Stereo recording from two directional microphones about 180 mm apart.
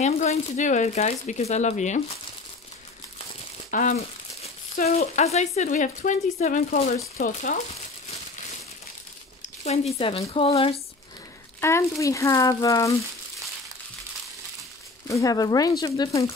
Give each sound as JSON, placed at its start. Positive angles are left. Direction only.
{"t": 0.0, "sound": "speech", "side_deg": 40}
{"t": 3.7, "sound": "crumpling", "side_deg": 40}
{"t": 4.9, "sound": "speech", "side_deg": 40}
{"t": 9.9, "sound": "speech", "side_deg": 30}
{"t": 11.6, "sound": "speech", "side_deg": 15}
{"t": 15.0, "sound": "speech", "side_deg": 20}